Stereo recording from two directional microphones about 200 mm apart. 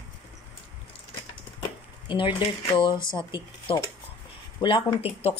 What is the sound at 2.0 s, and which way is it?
Speech, 25° left (ahead or behind).